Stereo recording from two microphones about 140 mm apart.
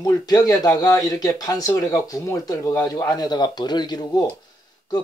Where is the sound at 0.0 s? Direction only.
25° left (ahead or behind).